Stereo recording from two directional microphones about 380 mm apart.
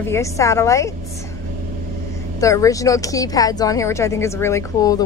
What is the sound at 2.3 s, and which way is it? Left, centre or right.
Speech, centre.